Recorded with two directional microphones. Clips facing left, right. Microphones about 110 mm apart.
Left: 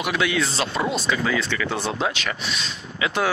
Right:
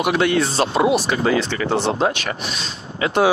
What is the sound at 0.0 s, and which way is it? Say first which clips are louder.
Speech: right 6 dB; 45° right (ahead or behind).